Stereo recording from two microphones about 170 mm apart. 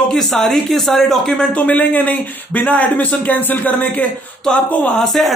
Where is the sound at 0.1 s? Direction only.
Centre (ahead or behind).